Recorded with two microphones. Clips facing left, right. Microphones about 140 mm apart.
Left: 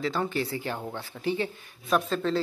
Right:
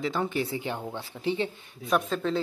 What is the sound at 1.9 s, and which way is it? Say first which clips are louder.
Speech: left 1 dB; 5° right (ahead or behind).